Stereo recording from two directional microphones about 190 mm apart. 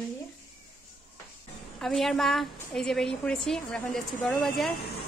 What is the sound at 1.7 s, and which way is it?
A woman's voice, centre (ahead or behind).